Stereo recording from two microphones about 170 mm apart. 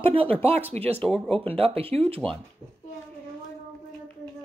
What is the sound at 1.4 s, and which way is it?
Speech, 35° right (ahead or behind).